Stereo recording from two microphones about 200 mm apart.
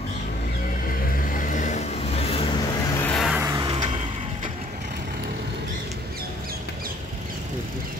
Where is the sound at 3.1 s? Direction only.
Centre (ahead or behind).